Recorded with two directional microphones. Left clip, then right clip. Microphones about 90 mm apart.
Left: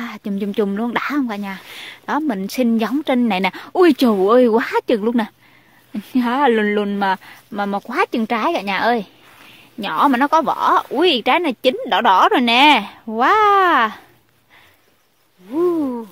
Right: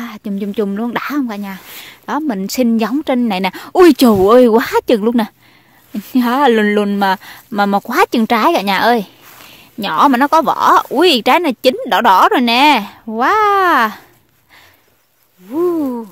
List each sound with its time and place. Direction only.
0.0 s speech: 20° right (ahead or behind)
3.7 s speech: 55° right (ahead or behind)
4.2 s speech: 35° right (ahead or behind)
7.5 s speech: 65° right (ahead or behind); by 14.0 s 35° right (ahead or behind)
15.5 s speech: 30° right (ahead or behind)